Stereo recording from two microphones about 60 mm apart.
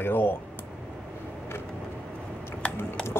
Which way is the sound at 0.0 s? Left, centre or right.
Left.